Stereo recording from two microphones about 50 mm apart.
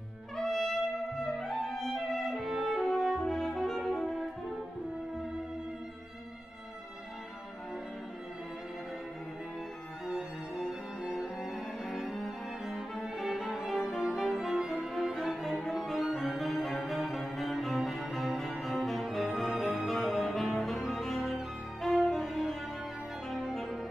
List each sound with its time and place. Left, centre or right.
0.4 s music: centre
10.0 s violin: centre
11.4 s music: centre
12.1 s violin: centre
13.7 s music: centre